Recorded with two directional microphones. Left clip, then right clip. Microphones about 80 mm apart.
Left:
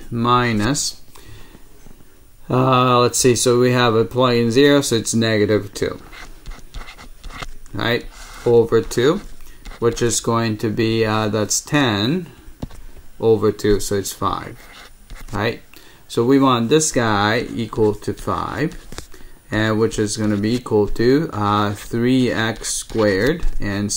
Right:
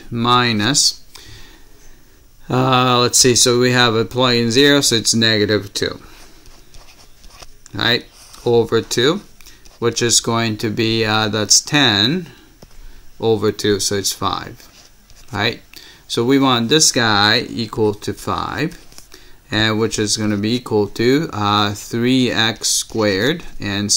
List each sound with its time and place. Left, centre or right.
0.1 s speech: right
2.4 s speech: centre
7.7 s speech: right